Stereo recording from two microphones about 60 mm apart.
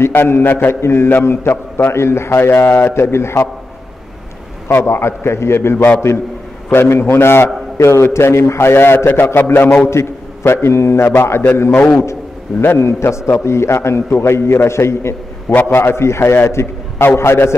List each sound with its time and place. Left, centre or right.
0.0 s a man's voice: left
0.7 s a man's voice: left
4.6 s a man's voice: left
12.1 s a man's voice: left